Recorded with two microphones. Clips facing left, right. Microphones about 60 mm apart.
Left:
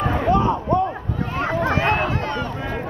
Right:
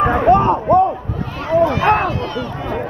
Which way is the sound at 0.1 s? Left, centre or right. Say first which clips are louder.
Right 6 dB; right.